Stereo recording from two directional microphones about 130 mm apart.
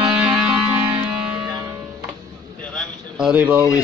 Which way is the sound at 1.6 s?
20° right (ahead or behind).